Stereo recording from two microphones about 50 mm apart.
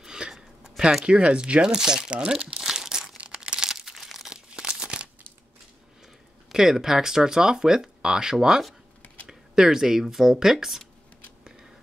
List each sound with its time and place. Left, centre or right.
0.0 s a sound: centre
1.0 s speech: right
2.6 s crumpling: centre
4.3 s crumpling: centre
6.5 s speech: centre
9.0 s computer keyboard: left
9.3 s speech: centre